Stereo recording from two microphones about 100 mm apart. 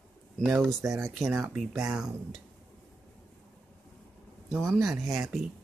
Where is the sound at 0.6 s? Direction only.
Centre (ahead or behind).